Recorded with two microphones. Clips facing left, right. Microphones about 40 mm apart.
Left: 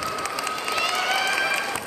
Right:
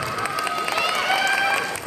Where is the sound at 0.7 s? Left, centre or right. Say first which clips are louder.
Right 1 dB; centre.